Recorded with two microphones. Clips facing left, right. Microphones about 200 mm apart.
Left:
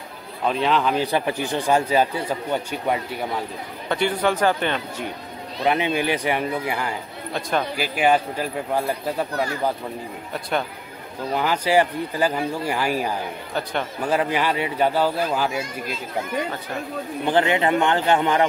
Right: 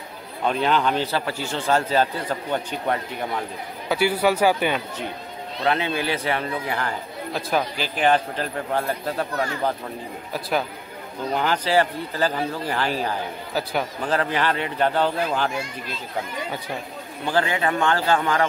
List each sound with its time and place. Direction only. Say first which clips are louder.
0.5 s speech: even; centre (ahead or behind)
1.0 s speech: left 3 dB; 15° left (ahead or behind)
3.9 s speech: right 1 dB; 5° right (ahead or behind)
5.6 s speech: left 2 dB; 15° left (ahead or behind)
11.3 s speech: left 2 dB; 5° left (ahead or behind)
17.3 s a man's voice: left 3 dB; 20° left (ahead or behind)